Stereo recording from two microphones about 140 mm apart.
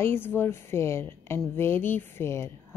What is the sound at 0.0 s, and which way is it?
A woman's voice, 15° left (ahead or behind).